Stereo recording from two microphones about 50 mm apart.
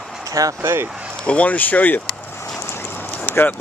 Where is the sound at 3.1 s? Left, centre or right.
Left.